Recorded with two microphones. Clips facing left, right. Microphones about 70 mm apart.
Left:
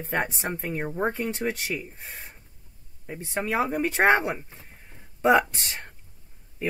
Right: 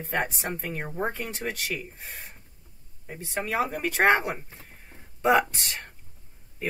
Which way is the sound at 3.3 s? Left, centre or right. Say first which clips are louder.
Left 2 dB; left.